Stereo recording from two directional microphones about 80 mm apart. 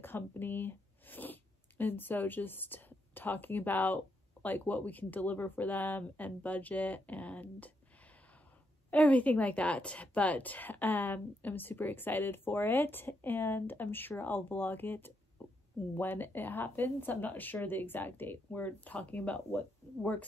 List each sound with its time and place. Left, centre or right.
0.0 s a woman's voice: left